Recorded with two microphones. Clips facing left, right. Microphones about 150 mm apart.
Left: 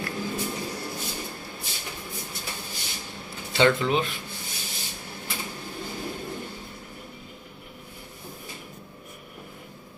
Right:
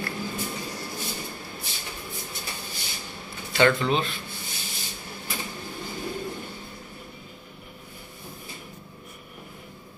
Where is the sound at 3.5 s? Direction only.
15° left (ahead or behind).